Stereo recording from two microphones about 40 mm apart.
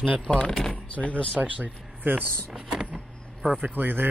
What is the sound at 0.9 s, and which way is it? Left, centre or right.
Speech, left.